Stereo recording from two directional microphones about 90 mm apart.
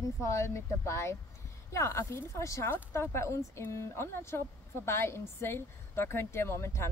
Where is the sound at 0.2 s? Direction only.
35° left (ahead or behind).